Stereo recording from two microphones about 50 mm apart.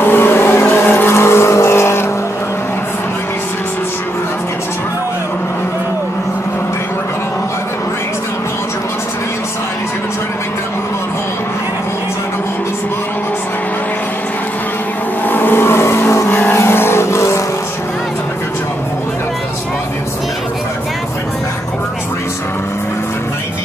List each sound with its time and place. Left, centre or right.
0.0 s vehicle: left
15.2 s vehicle: left
16.3 s vehicle: left
16.5 s vehicle: left